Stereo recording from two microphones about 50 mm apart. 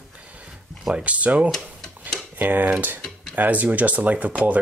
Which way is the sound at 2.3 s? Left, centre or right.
Right.